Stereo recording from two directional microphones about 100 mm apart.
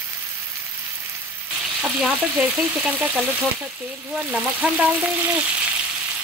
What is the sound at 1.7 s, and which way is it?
Frying, 15° right (ahead or behind).